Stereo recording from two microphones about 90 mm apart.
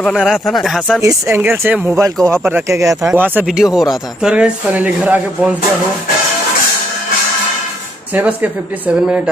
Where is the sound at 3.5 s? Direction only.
5° right (ahead or behind).